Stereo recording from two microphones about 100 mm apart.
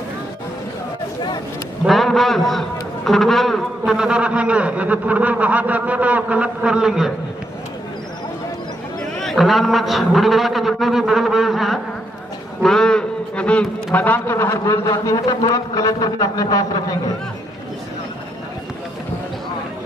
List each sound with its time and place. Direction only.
1.9 s a man's voice: centre (ahead or behind)
9.0 s a man's voice: 5° left (ahead or behind); by 14.8 s 25° left (ahead or behind)
14.9 s a man's voice: 35° left (ahead or behind)